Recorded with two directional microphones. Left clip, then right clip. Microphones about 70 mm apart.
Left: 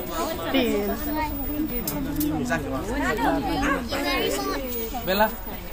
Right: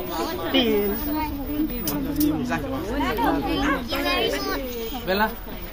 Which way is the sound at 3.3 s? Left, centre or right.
Centre.